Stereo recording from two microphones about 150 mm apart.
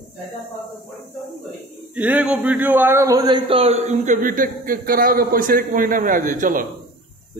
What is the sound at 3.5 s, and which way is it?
A man's voice, 40° right (ahead or behind).